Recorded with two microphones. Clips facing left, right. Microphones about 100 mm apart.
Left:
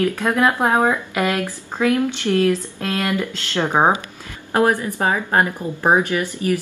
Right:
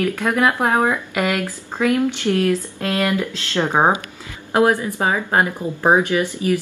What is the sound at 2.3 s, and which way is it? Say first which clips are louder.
Speech: left 2 dB; 15° left (ahead or behind).